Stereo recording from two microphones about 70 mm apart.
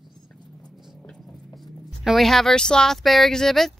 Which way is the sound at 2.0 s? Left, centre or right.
Centre.